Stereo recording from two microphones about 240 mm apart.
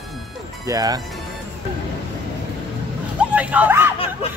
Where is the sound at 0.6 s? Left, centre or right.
Centre.